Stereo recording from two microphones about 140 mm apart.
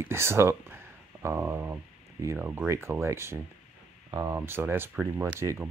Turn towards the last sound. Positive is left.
turn(degrees=-15)  # may be behind; listen again after turning